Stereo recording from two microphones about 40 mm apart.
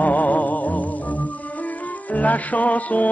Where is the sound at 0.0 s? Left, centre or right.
Left.